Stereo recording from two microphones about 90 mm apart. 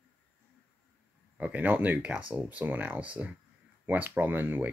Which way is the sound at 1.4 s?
15° right (ahead or behind).